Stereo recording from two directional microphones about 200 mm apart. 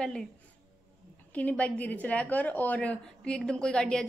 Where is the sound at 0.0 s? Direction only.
5° left (ahead or behind).